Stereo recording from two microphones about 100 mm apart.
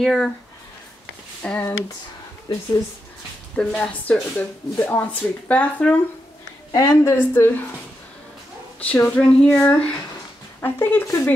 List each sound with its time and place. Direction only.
0.0 s speech: 5° left (ahead or behind)
1.4 s speech: 15° left (ahead or behind)
2.5 s a woman's voice: 50° left (ahead or behind)
3.5 s speech: 10° left (ahead or behind)
6.7 s a woman's voice: 35° left (ahead or behind)
8.7 s a sound: 15° left (ahead or behind)
9.1 s a woman's voice: 20° left (ahead or behind)